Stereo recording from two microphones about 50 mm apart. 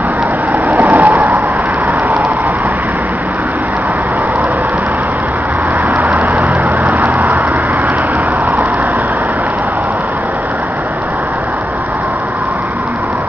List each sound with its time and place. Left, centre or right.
0.5 s vehicle: right
1.1 s vehicle: right
5.9 s vehicle: right